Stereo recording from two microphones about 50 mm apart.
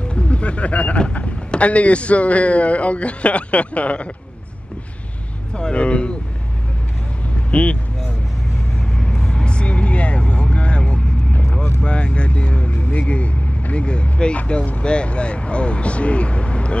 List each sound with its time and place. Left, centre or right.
0.1 s speech: left
5.5 s speech: centre
7.5 s speech: left
8.9 s vehicle: centre
11.8 s speech: left